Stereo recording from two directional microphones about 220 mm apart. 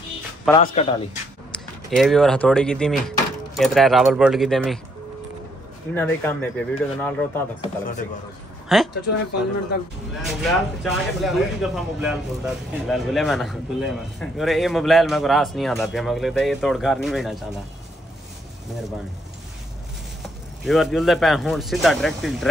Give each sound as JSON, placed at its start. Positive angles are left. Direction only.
{"t": 0.6, "sound": "speech", "side_deg": 30}
{"t": 1.5, "sound": "speech", "side_deg": 0}
{"t": 5.9, "sound": "speech", "side_deg": 10}
{"t": 7.6, "sound": "speech", "side_deg": 35}
{"t": 8.7, "sound": "speech", "side_deg": 0}
{"t": 10.2, "sound": "speech", "side_deg": 0}
{"t": 20.6, "sound": "speech", "side_deg": 0}